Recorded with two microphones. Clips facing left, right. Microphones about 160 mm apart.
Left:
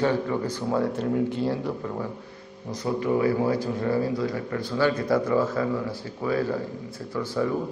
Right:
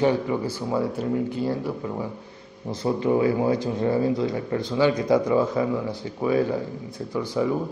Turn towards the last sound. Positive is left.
turn(degrees=-15)  # may be behind; listen again after turning